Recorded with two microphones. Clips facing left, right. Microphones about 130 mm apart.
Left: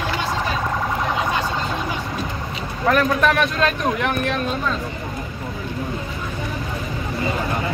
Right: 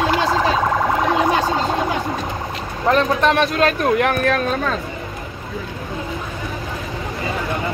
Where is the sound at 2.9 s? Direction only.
25° right (ahead or behind); by 4.4 s 40° right (ahead or behind).